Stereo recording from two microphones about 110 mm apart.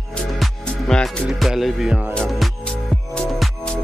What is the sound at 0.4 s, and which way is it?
Music, 5° left (ahead or behind).